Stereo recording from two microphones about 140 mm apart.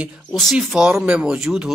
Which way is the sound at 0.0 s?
5° right (ahead or behind).